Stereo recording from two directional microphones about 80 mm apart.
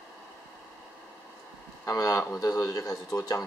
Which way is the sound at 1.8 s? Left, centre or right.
Left.